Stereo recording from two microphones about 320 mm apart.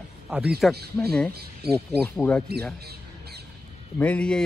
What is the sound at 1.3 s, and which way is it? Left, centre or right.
Speech, right.